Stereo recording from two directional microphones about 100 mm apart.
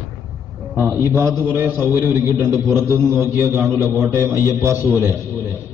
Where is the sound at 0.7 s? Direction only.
25° right (ahead or behind).